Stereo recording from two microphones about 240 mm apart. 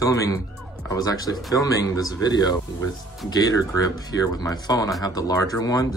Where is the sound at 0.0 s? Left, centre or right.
Centre.